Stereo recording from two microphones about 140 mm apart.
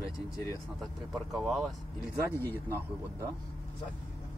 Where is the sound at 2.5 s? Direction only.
20° right (ahead or behind).